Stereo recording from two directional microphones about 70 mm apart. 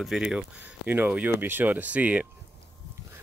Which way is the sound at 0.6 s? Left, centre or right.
Right.